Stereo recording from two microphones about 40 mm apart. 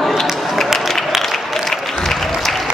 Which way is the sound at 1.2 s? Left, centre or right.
Centre.